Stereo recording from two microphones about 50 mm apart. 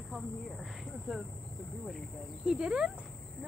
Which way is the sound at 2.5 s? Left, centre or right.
Centre.